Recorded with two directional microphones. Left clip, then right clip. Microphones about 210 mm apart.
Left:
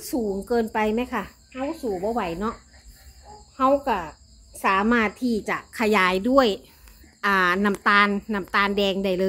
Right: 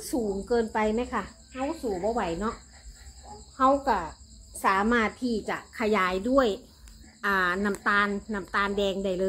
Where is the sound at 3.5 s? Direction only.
50° left (ahead or behind).